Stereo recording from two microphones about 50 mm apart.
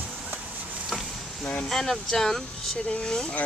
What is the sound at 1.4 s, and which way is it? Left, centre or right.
Speech, left.